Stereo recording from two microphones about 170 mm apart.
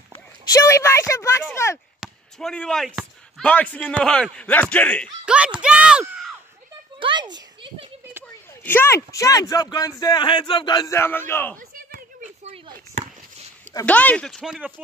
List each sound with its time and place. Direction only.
0.1 s speech: 20° left (ahead or behind)
2.0 s speech: 5° left (ahead or behind)
5.2 s speech: 5° right (ahead or behind)
7.0 s a sound: 30° right (ahead or behind)
8.6 s speech: 15° left (ahead or behind)
11.5 s a sound: 55° right (ahead or behind)
13.8 s speech: 10° left (ahead or behind)